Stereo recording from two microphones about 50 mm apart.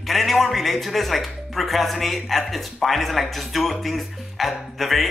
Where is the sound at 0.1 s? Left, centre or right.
Centre.